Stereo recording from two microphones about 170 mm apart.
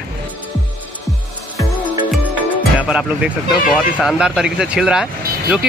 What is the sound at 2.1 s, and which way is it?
Music, 10° right (ahead or behind).